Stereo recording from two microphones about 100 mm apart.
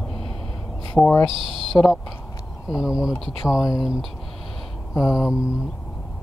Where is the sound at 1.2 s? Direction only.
60° right (ahead or behind).